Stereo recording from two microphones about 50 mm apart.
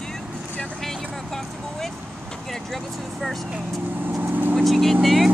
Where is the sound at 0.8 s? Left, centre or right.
Centre.